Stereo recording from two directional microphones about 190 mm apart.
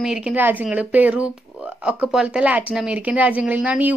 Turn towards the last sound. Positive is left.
turn(degrees=-5)  # may be behind; listen again after turning